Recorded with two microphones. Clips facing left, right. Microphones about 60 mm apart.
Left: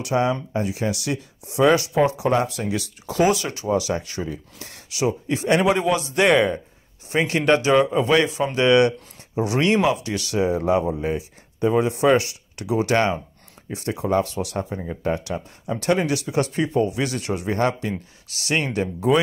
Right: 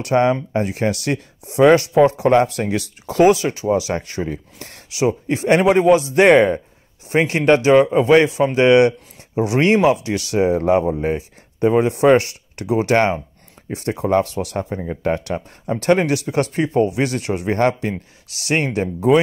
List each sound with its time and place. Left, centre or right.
0.0 s speech: right
3.6 s speech: right
3.9 s speech: right
4.9 s speech: right
15.0 s speech: right